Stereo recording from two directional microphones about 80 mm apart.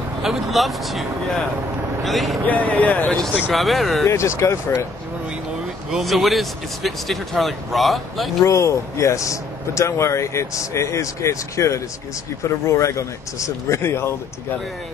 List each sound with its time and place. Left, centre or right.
0.2 s speech: centre
2.4 s speech: centre
3.5 s speech: centre
4.0 s a man's voice: left
5.9 s speech: centre
8.5 s a man's voice: left